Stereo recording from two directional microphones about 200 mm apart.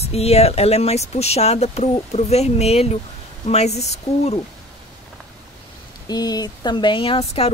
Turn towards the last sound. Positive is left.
turn(degrees=30)  # may be behind; listen again after turning